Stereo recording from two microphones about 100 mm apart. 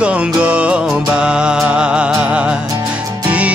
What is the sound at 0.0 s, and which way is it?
Music, 10° right (ahead or behind).